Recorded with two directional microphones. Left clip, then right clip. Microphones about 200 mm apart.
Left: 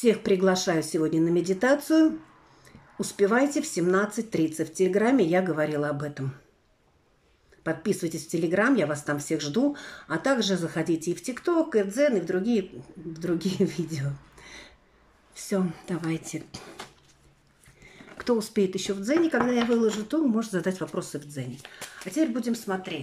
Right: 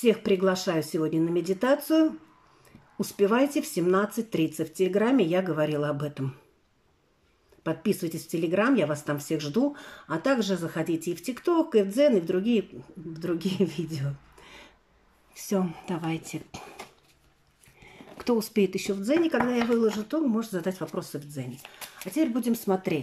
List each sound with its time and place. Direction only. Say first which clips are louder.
0.0 s speech: left 1 dB; centre (ahead or behind)
7.6 s speech: left 1 dB; 5° right (ahead or behind)